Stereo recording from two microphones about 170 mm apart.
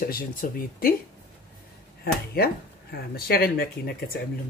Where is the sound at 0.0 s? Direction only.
60° left (ahead or behind).